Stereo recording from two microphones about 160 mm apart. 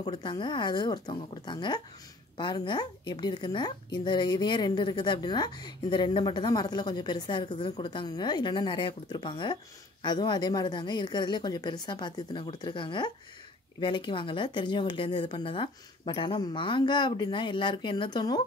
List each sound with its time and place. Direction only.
0.0 s speech: 30° left (ahead or behind)